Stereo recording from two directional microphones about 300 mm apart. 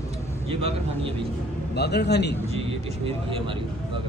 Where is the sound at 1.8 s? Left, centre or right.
Left.